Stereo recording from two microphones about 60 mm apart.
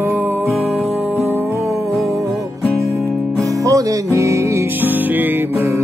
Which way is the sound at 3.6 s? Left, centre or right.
Right.